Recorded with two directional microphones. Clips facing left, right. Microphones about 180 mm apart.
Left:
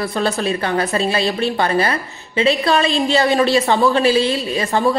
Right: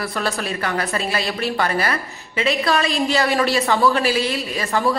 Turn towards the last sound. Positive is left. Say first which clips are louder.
# left 4 dB
turn(degrees=25)  # may be behind; listen again after turning